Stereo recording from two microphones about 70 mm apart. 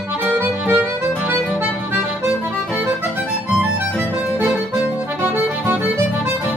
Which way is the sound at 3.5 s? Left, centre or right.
Right.